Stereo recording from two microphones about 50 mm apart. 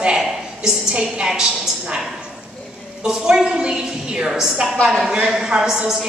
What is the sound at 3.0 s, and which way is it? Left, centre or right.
A woman's voice, centre.